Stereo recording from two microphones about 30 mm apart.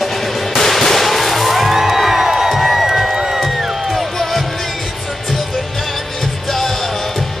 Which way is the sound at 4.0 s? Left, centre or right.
Centre.